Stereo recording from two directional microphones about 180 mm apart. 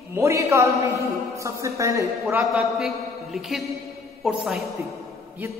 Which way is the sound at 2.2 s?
Centre (ahead or behind).